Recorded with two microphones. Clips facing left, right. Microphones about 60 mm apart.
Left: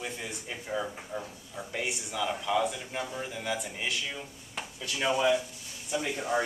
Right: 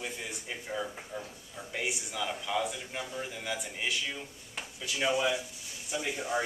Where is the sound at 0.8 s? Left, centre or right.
Centre.